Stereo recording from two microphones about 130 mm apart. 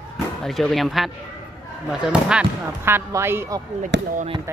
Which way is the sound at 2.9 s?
20° right (ahead or behind).